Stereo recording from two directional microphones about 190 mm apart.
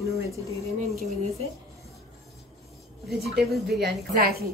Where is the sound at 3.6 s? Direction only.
55° right (ahead or behind).